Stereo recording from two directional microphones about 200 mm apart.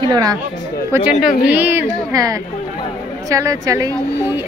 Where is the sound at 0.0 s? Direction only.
20° right (ahead or behind).